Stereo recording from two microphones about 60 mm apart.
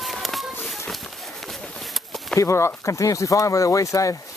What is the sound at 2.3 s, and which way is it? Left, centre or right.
Speech, left.